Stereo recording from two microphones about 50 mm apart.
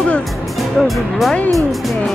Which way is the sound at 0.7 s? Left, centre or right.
Centre.